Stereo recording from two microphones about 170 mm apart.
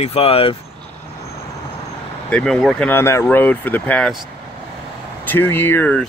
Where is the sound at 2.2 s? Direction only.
5° left (ahead or behind).